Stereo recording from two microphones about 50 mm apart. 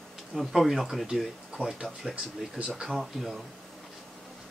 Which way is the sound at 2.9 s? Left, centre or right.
Centre.